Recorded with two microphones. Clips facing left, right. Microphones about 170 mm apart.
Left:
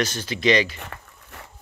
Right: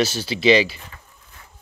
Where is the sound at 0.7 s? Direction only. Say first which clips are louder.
Left 5 dB; 70° left (ahead or behind).